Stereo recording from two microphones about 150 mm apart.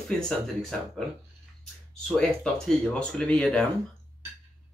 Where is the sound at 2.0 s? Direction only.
5° left (ahead or behind).